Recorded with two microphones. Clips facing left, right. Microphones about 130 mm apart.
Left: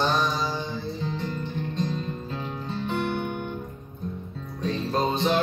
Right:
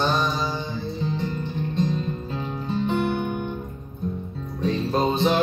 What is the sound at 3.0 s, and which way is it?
Guitar, 5° right (ahead or behind).